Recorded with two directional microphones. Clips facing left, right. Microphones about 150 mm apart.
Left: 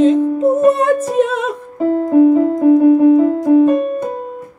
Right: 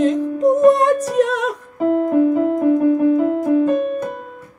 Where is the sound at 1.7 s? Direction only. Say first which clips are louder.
Left 4 dB; 35° left (ahead or behind).